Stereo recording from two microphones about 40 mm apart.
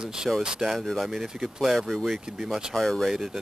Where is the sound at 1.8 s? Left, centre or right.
Centre.